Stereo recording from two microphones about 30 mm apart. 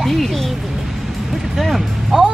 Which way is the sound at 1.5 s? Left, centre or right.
Centre.